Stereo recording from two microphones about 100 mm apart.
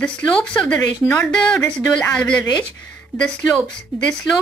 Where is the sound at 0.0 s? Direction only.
10° left (ahead or behind).